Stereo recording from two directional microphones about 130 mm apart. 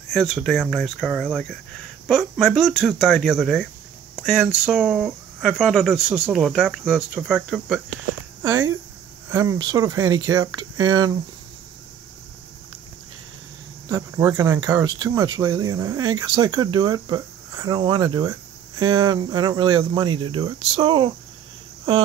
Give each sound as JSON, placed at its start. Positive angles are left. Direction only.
{"t": 0.1, "sound": "speech", "side_deg": 0}
{"t": 8.4, "sound": "speech", "side_deg": -25}
{"t": 13.8, "sound": "speech", "side_deg": -25}
{"t": 14.9, "sound": "speech", "side_deg": -35}